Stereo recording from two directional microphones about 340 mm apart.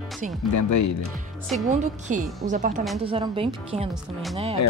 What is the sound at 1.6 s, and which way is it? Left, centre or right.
Speech, right.